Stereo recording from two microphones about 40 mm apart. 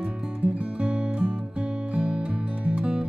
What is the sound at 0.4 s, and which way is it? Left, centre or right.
Music, right.